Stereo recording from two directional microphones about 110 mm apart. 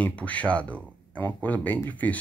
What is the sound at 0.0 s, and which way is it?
Speech, 10° left (ahead or behind).